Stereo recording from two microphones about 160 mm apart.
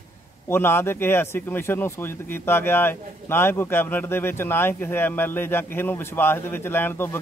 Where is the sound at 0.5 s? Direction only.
15° left (ahead or behind).